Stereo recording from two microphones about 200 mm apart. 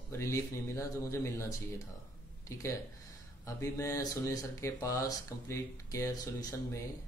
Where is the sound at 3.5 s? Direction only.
15° left (ahead or behind).